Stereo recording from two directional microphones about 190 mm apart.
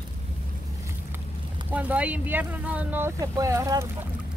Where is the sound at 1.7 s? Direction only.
10° right (ahead or behind).